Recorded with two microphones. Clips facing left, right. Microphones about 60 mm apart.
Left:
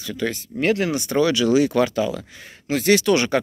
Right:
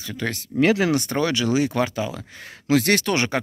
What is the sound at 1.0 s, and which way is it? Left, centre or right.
Speech, right.